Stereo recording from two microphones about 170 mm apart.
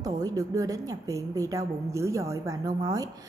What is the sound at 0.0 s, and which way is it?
A woman's voice, 20° right (ahead or behind).